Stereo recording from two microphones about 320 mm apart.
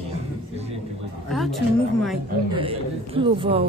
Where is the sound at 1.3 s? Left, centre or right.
Centre.